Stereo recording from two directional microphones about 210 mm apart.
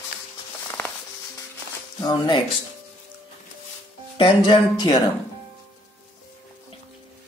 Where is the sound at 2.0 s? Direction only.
20° left (ahead or behind).